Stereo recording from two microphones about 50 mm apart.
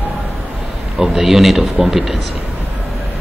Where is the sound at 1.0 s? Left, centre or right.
Centre.